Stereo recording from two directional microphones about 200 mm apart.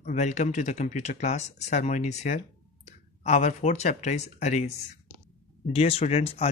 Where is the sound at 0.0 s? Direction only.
35° left (ahead or behind).